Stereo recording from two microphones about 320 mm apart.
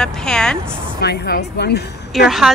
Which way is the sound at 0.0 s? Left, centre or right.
Centre.